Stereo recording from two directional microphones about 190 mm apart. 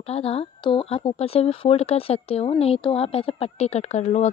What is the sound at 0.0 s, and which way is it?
Speech, 30° left (ahead or behind).